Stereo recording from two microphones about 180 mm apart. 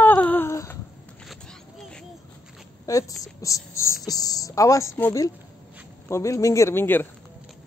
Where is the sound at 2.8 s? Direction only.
20° left (ahead or behind).